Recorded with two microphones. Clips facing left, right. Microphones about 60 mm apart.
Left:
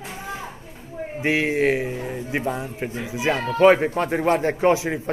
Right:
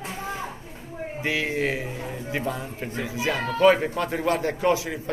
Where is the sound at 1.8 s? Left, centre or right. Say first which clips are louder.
Left 4 dB; left.